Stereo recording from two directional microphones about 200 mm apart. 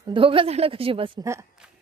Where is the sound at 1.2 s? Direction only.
15° right (ahead or behind).